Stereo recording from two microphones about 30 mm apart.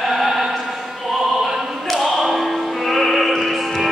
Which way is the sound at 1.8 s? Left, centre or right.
Centre.